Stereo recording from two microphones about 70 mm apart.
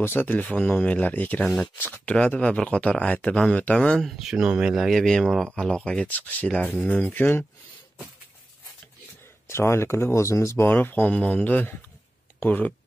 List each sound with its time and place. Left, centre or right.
0.0 s speech: left
1.4 s speech: centre
1.8 s speech: left
4.0 s speech: centre
6.6 s speech: left
9.5 s speech: left
11.1 s speech: centre